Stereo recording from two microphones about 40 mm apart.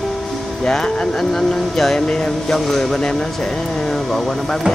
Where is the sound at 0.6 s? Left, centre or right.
Centre.